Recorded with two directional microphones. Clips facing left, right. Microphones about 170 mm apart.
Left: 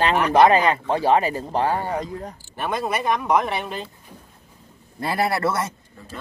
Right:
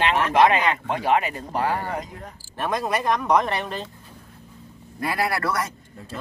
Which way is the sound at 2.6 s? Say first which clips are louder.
Even; centre (ahead or behind).